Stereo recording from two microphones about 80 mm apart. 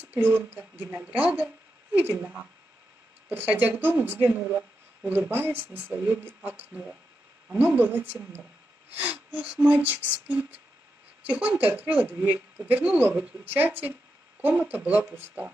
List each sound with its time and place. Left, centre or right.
0.0 s a woman's voice: right